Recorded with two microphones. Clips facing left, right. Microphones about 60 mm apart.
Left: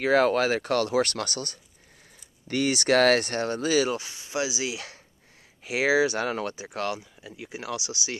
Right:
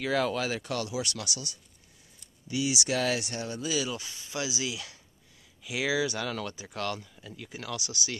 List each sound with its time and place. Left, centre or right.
0.0 s speech: left